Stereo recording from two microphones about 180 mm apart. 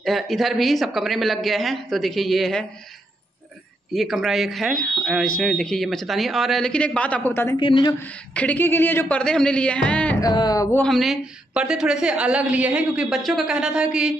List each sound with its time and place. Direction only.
0.0 s a woman's voice: centre (ahead or behind)
3.9 s a woman's voice: centre (ahead or behind)
7.5 s speech: 25° left (ahead or behind)
8.0 s speech: 10° left (ahead or behind)
10.2 s speech: 20° left (ahead or behind)
10.8 s a woman's voice: centre (ahead or behind)